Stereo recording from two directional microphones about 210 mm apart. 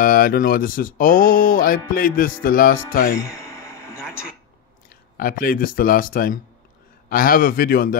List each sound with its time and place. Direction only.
0.0 s speech: 40° left (ahead or behind)
3.2 s a sound: 15° left (ahead or behind)
5.1 s speech: 45° left (ahead or behind)